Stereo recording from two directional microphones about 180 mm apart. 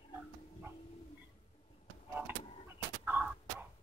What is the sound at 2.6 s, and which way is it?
Fowl, 10° right (ahead or behind).